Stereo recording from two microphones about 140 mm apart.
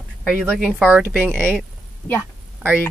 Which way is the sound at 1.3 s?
15° right (ahead or behind).